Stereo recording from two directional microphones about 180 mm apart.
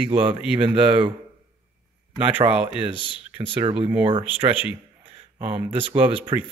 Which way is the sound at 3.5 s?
30° right (ahead or behind).